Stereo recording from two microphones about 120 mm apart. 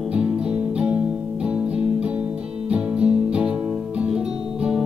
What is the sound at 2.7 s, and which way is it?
Music, 10° right (ahead or behind).